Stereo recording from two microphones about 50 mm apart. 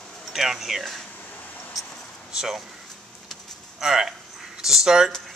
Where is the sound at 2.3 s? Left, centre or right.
Centre.